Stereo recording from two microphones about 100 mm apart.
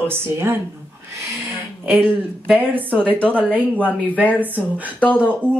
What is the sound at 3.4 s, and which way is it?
Speech, 15° right (ahead or behind).